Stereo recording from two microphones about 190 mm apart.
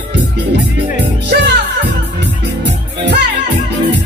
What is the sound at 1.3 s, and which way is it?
Music, 60° right (ahead or behind).